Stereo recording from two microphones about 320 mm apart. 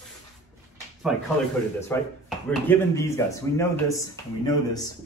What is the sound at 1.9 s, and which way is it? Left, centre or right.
Speech, centre.